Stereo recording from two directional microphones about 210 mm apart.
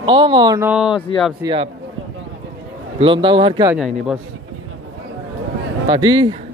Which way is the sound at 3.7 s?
5° right (ahead or behind).